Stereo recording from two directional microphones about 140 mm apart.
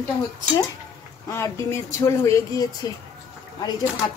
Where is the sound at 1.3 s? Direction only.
20° left (ahead or behind).